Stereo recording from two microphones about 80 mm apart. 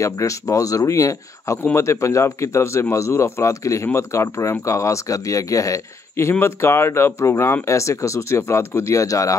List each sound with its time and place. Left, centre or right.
0.0 s a man's voice: left